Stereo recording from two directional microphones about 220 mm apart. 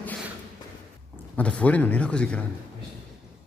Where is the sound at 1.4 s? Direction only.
5° left (ahead or behind).